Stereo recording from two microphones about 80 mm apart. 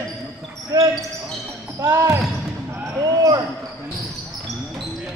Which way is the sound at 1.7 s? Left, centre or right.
Right.